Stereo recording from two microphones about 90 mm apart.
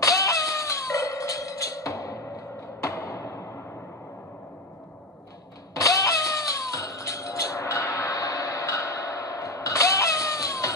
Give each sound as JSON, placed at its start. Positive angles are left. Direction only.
{"t": 0.0, "sound": "music", "side_deg": 40}
{"t": 5.8, "sound": "music", "side_deg": 40}